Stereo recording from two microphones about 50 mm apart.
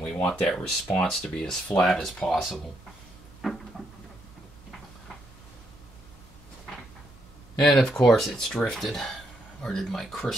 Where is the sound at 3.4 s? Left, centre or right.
Centre.